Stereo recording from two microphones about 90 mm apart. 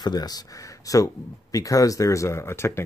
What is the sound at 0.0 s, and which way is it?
Speech, 50° left (ahead or behind).